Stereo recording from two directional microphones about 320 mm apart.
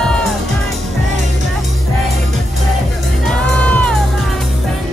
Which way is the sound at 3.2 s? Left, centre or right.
Centre.